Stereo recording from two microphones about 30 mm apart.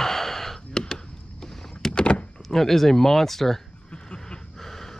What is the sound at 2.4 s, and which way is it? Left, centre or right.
Speech, centre.